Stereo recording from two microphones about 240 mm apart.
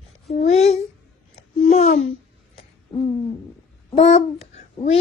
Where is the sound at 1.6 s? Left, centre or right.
Left.